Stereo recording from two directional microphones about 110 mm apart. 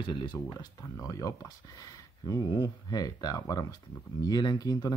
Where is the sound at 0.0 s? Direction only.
50° left (ahead or behind).